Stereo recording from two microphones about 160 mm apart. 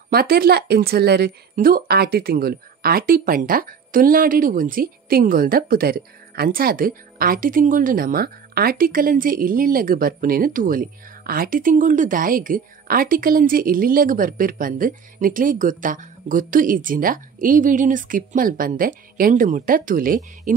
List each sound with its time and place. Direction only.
0.1 s a woman's voice: 70° right (ahead or behind)